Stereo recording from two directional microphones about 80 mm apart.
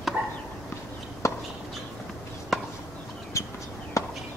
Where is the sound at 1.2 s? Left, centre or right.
Left.